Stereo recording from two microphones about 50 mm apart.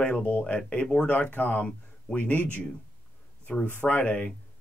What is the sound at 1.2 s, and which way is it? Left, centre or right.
Speech, left.